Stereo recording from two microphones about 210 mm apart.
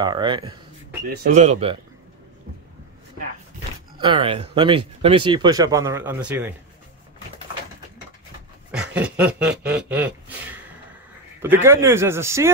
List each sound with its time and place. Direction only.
0.0 s speech: 20° right (ahead or behind)
1.2 s speech: 35° right (ahead or behind)
4.0 s speech: 25° right (ahead or behind); by 6.5 s 10° right (ahead or behind)
8.7 s snicker: 5° right (ahead or behind)
11.4 s speech: 10° right (ahead or behind)